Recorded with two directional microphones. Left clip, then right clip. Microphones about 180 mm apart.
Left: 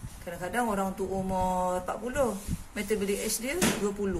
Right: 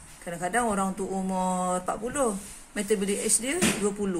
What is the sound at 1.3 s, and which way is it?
Speech, 60° right (ahead or behind).